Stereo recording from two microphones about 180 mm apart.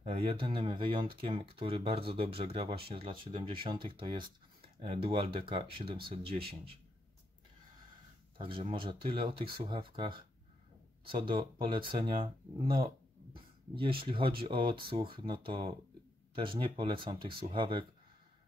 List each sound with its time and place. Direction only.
0.1 s speech: 30° right (ahead or behind)
8.4 s speech: 30° right (ahead or behind)